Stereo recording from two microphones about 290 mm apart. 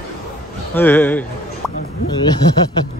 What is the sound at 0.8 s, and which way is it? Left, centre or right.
Speech, centre.